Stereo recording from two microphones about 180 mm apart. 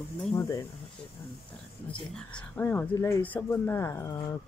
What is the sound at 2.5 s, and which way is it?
Speech, 10° left (ahead or behind).